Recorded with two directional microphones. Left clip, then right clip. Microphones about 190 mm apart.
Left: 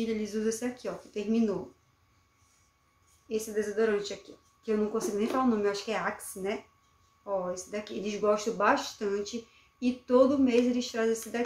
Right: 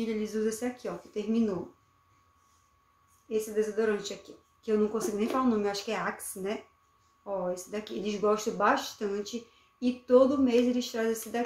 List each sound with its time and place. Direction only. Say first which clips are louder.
0.0 s speech: even; 5° left (ahead or behind)
3.3 s speech: right 2 dB; 5° left (ahead or behind)
7.5 s speech: even; centre (ahead or behind)